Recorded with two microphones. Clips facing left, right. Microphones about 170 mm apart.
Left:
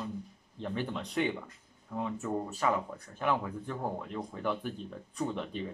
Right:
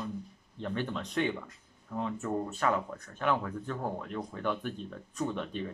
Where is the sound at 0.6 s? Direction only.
20° left (ahead or behind).